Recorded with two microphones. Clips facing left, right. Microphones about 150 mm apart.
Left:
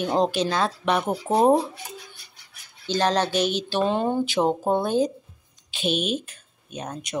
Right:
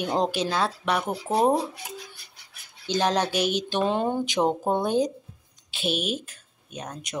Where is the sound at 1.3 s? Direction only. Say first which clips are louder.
Left 3 dB; 40° left (ahead or behind).